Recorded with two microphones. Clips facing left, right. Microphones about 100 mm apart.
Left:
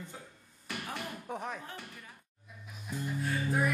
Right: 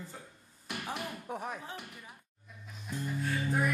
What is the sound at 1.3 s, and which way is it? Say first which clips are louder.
Speech: left 1 dB; centre (ahead or behind).